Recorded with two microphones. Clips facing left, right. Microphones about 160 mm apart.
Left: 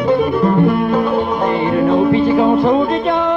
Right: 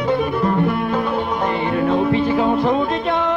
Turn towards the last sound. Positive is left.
turn(degrees=40)  # may be behind; listen again after turning